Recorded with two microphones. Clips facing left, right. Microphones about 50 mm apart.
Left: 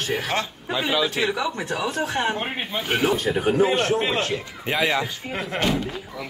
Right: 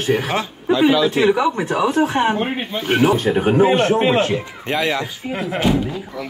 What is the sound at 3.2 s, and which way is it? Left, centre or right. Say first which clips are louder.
Speech: right 5 dB; right.